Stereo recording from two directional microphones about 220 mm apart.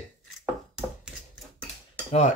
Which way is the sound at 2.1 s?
30° left (ahead or behind).